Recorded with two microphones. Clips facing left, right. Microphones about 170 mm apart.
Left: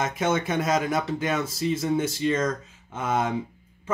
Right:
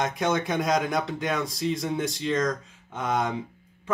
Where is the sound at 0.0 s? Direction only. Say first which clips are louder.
Left 1 dB; 5° left (ahead or behind).